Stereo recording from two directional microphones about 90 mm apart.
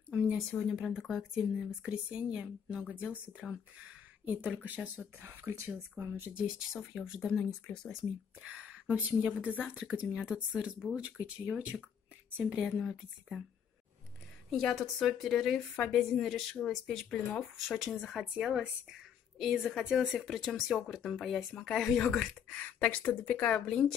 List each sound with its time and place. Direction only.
0.7 s speech: 5° right (ahead or behind); by 6.3 s 25° right (ahead or behind)
6.3 s speech: 5° right (ahead or behind)
7.6 s speech: 10° left (ahead or behind)
8.4 s speech: 15° right (ahead or behind)
9.5 s speech: 20° left (ahead or behind)
9.8 s speech: 10° right (ahead or behind)
14.5 s a woman's voice: centre (ahead or behind)
22.7 s speech: 15° left (ahead or behind)